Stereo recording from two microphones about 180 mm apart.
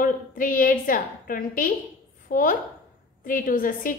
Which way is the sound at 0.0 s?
50° left (ahead or behind).